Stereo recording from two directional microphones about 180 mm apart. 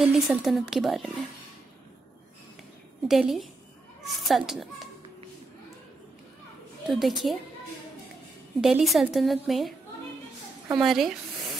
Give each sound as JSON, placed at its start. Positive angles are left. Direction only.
{"t": 0.0, "sound": "a woman's voice", "side_deg": 0}
{"t": 3.1, "sound": "a woman's voice", "side_deg": 0}
{"t": 6.9, "sound": "a woman's voice", "side_deg": 0}
{"t": 8.5, "sound": "a woman's voice", "side_deg": 0}